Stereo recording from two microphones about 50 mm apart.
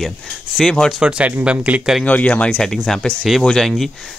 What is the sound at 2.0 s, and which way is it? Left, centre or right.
Speech, left.